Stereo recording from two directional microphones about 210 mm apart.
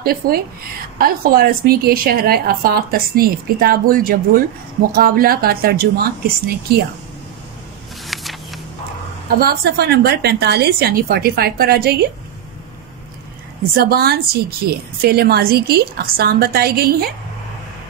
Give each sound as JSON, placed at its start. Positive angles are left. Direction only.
{"t": 0.0, "sound": "a woman's voice", "side_deg": -45}
{"t": 8.1, "sound": "a sound", "side_deg": 0}
{"t": 9.4, "sound": "a woman's voice", "side_deg": -50}
{"t": 13.7, "sound": "a woman's voice", "side_deg": -45}